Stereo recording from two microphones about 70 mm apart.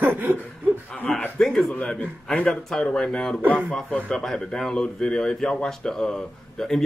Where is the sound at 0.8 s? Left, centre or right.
Centre.